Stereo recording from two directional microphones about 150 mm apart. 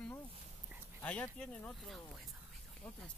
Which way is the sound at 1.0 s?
5° left (ahead or behind).